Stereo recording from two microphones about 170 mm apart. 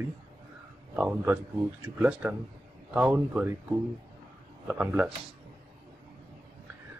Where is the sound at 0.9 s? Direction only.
10° right (ahead or behind).